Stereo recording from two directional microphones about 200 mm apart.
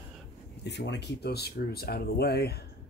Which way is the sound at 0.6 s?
60° left (ahead or behind).